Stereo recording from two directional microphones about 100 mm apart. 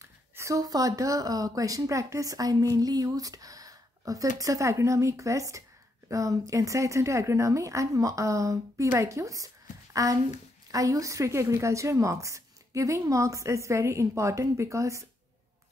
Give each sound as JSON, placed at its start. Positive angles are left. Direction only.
{"t": 0.4, "sound": "speech", "side_deg": -35}